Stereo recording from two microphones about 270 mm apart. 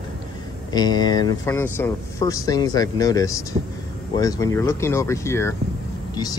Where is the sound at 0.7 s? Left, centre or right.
Centre.